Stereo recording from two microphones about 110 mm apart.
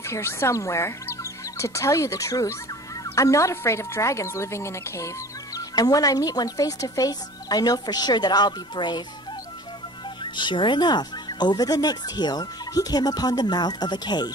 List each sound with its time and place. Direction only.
0.0 s speech: 25° left (ahead or behind); by 9.0 s 40° left (ahead or behind)
10.2 s speech: 45° left (ahead or behind)